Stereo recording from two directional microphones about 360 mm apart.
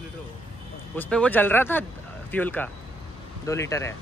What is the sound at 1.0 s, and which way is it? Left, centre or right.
Speech, centre.